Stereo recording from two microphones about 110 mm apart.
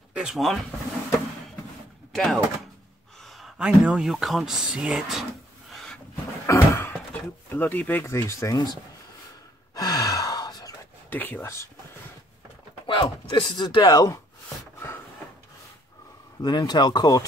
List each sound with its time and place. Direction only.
0.1 s speech: 5° right (ahead or behind)
2.1 s speech: centre (ahead or behind)
5.7 s a sound: centre (ahead or behind)
6.4 s a sound: 25° left (ahead or behind)
7.4 s speech: 20° left (ahead or behind)
9.8 s gasp: 35° left (ahead or behind)
11.1 s speech: 15° left (ahead or behind)
12.8 s speech: 50° left (ahead or behind); by 14.2 s 35° left (ahead or behind)
16.3 s speech: 40° left (ahead or behind)